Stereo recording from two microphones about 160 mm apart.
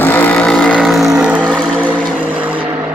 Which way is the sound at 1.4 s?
5° left (ahead or behind).